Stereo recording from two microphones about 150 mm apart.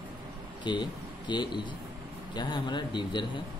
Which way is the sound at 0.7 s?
30° left (ahead or behind).